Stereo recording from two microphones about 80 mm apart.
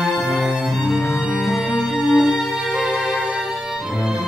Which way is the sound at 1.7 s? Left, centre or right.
Centre.